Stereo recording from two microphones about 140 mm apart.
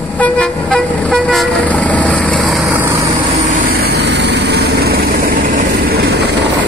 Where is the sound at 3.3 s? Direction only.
65° right (ahead or behind); by 6.1 s 90° right.